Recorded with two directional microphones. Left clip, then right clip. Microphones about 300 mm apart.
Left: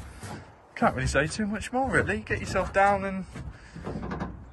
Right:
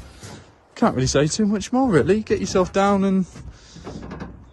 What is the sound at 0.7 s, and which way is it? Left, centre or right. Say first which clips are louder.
Speech: right 5 dB; centre.